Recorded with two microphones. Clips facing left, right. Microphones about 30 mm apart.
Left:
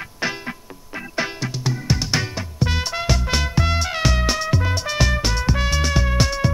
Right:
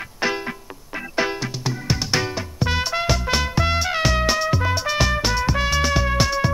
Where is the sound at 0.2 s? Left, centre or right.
Centre.